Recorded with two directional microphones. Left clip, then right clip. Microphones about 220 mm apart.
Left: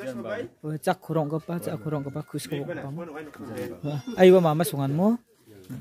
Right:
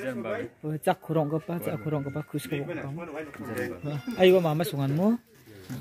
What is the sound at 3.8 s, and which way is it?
Speech, 30° left (ahead or behind).